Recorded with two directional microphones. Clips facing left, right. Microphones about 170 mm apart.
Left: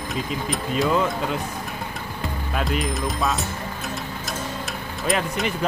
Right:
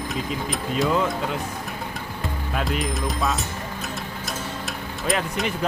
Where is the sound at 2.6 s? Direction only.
Centre (ahead or behind).